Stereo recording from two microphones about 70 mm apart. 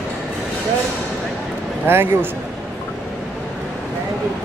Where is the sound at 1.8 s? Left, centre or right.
Right.